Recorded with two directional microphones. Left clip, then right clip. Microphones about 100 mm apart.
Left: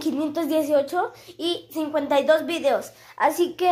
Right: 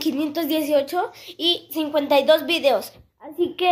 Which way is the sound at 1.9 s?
20° right (ahead or behind).